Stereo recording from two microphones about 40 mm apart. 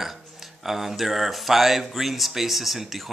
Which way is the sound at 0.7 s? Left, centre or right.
Centre.